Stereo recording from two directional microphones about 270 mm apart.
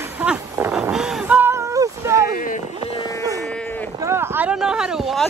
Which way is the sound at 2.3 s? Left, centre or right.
Left.